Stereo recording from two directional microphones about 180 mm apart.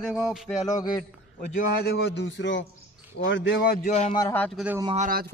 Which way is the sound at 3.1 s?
90° left.